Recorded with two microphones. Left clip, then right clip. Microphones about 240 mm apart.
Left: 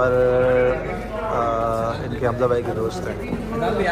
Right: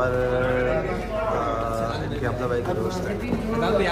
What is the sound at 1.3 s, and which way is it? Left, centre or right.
Speech, centre.